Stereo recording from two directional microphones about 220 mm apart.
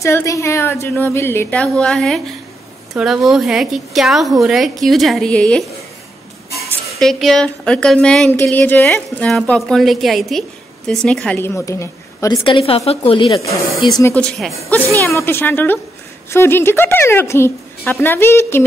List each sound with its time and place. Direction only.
0.0 s a woman's voice: 15° left (ahead or behind)
7.0 s a woman's voice: centre (ahead or behind); by 14.1 s 20° left (ahead or behind)
14.1 s a woman's voice: 5° left (ahead or behind)